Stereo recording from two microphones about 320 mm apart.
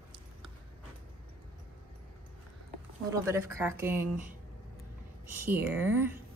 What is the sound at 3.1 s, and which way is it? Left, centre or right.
Speech, centre.